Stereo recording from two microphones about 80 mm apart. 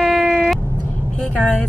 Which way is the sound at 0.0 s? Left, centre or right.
Centre.